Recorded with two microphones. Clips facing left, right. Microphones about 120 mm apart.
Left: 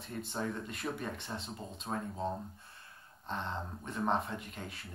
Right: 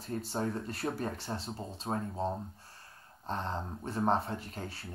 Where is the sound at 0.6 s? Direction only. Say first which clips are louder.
Right 4 dB; 35° right (ahead or behind).